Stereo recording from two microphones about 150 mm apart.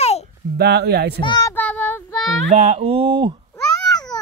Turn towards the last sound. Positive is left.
turn(degrees=25)  # may be behind; listen again after turning